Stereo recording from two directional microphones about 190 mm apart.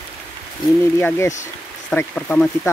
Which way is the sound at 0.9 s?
15° left (ahead or behind).